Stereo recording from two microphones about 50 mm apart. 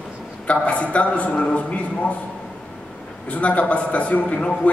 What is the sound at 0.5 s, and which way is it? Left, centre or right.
A man's voice, left.